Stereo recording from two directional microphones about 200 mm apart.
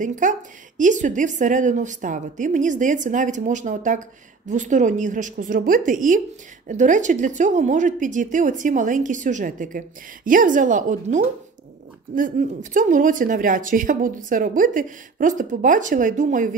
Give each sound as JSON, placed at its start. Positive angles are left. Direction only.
{"t": 0.0, "sound": "a woman's voice", "side_deg": -40}